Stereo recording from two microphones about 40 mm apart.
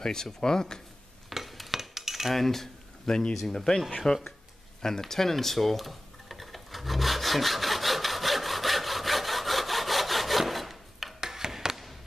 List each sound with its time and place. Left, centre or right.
0.0 s speech: centre
1.3 s cutlery: centre
2.3 s speech: centre
3.1 s speech: centre
4.8 s tick-tock: centre
11.1 s a sound: centre